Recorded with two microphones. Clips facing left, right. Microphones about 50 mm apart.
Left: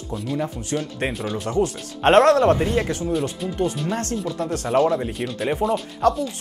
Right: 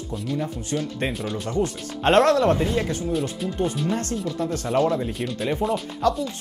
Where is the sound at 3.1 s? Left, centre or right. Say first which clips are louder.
Left 1 dB; centre.